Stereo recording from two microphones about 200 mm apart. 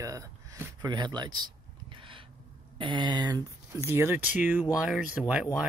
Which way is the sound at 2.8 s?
20° right (ahead or behind).